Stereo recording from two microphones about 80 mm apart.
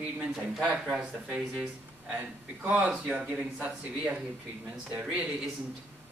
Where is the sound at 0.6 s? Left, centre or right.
Centre.